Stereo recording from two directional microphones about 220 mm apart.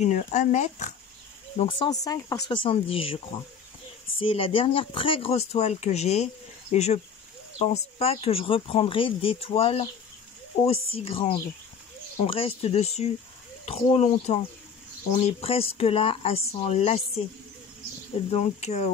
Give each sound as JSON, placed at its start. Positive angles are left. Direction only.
{"t": 0.0, "sound": "speech", "side_deg": 35}
{"t": 18.3, "sound": "speech", "side_deg": 30}